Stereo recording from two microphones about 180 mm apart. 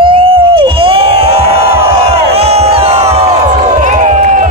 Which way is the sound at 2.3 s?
35° right (ahead or behind).